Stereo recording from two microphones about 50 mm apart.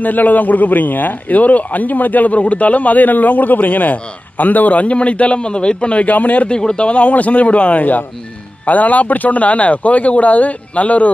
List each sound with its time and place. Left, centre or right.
0.0 s a man's voice: left
6.5 s a man's voice: centre